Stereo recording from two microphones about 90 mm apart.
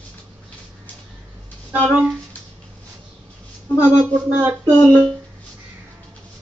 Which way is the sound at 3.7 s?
15° right (ahead or behind).